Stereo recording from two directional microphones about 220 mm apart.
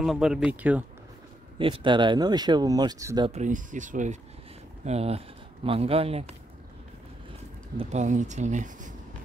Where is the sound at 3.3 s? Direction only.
35° right (ahead or behind).